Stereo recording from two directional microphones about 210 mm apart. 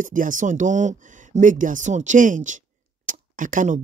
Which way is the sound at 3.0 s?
40° right (ahead or behind).